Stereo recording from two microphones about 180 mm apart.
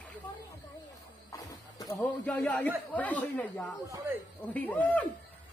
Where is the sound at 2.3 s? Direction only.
10° left (ahead or behind).